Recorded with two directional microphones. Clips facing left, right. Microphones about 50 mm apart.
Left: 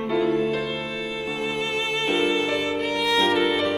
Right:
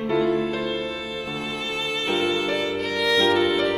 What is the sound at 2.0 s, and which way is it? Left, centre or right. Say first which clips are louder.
Violin: left 1 dB; centre.